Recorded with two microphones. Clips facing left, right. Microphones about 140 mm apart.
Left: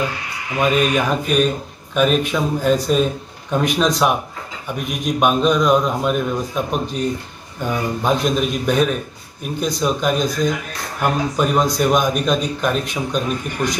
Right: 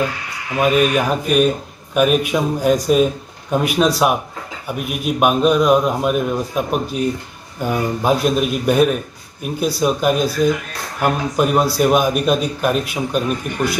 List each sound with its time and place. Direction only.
0.6 s a man's voice: 5° right (ahead or behind)